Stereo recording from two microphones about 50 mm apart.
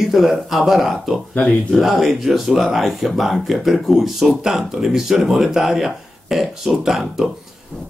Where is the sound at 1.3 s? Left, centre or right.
Left.